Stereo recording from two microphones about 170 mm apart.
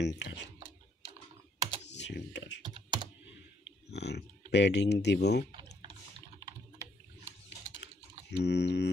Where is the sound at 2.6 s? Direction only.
25° right (ahead or behind).